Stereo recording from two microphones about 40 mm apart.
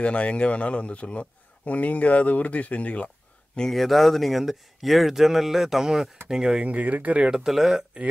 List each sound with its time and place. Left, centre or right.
0.0 s a man's voice: left
3.7 s speech: centre
6.6 s speech: right
7.4 s speech: centre